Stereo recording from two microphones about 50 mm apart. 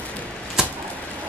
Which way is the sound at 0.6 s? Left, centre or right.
Centre.